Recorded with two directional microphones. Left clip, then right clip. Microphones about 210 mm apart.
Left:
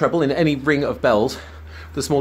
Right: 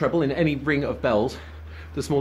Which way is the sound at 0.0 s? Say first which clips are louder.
Left 4 dB; 20° left (ahead or behind).